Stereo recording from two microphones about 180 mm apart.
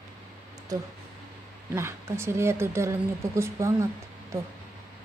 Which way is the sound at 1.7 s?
15° right (ahead or behind).